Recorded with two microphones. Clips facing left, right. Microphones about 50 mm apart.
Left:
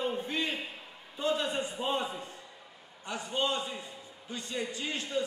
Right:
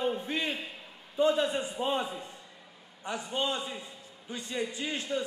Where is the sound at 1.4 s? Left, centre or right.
Left.